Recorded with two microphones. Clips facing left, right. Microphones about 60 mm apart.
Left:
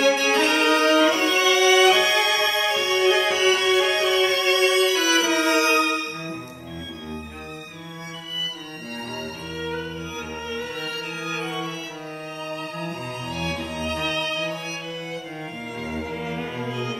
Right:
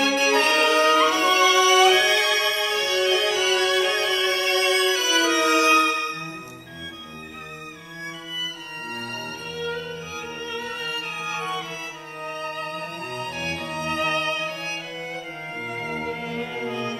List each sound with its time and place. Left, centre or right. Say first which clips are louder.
0.4 s violin: even; left
1.1 s music: right 2 dB; left
13.3 s music: left 1 dB; right
15.7 s music: right 1 dB; right